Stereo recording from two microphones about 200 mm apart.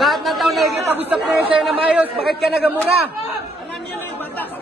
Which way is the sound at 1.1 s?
5° right (ahead or behind).